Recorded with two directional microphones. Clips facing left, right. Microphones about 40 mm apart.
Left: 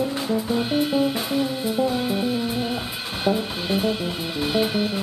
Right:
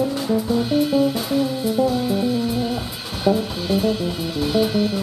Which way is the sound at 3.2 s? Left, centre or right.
Left.